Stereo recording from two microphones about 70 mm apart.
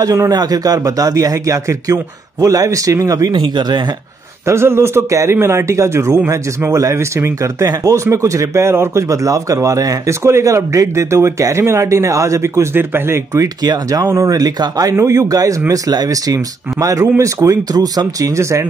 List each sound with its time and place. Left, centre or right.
0.0 s speech: right
4.5 s speech: right
7.7 s speech: right
8.0 s speech: right
12.7 s speech: right
13.6 s speech: right
14.0 s speech: right
17.7 s speech: right
18.3 s speech: right